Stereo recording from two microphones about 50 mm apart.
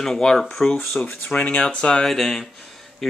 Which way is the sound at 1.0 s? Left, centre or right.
Left.